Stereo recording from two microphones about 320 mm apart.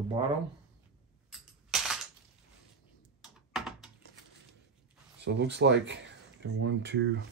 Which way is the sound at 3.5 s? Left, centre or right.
Centre.